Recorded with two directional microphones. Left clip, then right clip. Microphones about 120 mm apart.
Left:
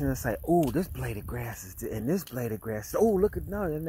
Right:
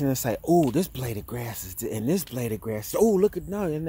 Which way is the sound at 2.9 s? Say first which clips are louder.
Right 3 dB; 15° right (ahead or behind).